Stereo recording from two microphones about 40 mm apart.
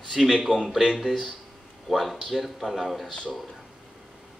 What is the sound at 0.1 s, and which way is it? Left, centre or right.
A man's voice, centre.